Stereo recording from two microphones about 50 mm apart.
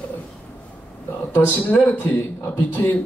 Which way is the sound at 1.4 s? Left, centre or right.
Left.